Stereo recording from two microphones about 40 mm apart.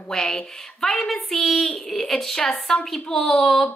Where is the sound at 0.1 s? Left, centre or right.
Centre.